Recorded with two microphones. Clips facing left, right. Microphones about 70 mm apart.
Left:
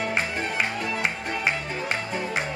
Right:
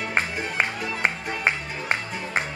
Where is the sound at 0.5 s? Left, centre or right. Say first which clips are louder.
Right 3 dB; right.